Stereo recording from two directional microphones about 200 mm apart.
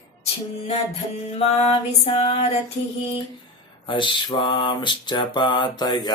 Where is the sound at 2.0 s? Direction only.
30° left (ahead or behind).